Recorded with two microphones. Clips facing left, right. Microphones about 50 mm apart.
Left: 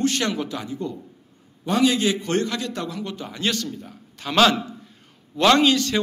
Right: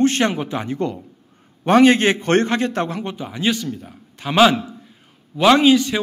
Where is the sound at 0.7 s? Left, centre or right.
Right.